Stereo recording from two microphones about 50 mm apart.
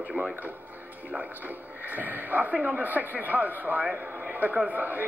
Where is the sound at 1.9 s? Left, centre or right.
Right.